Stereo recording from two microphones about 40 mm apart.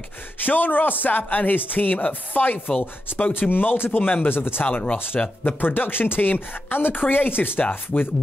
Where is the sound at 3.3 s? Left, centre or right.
Left.